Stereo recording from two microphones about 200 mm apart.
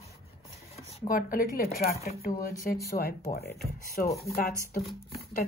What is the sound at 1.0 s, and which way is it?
Speech, 45° left (ahead or behind).